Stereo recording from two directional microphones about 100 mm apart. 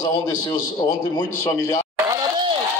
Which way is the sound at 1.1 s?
35° left (ahead or behind).